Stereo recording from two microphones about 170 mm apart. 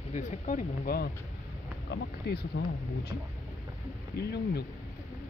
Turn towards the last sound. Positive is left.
turn(degrees=75)  # may be behind; listen again after turning